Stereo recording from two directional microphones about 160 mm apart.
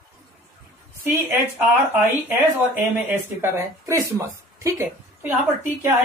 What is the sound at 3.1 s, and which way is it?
A woman's voice, 15° right (ahead or behind).